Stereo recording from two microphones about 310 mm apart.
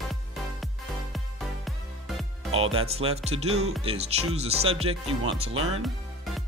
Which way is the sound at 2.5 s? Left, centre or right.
Centre.